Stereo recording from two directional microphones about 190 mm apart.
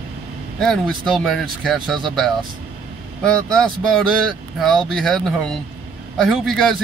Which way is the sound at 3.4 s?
5° left (ahead or behind).